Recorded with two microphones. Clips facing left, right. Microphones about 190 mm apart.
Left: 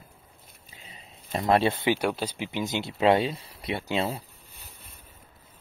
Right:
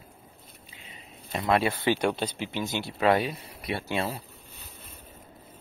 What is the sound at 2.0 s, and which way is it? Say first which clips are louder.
Speech: right 1 dB; 5° left (ahead or behind).